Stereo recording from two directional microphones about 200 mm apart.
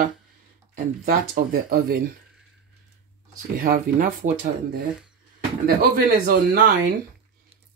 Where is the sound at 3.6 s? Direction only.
45° right (ahead or behind).